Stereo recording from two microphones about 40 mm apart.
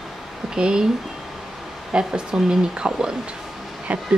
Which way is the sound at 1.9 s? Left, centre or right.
Centre.